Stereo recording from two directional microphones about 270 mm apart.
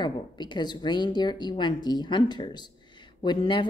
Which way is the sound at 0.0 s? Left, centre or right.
Centre.